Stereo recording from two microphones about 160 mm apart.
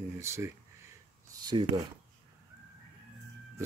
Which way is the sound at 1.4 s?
30° right (ahead or behind).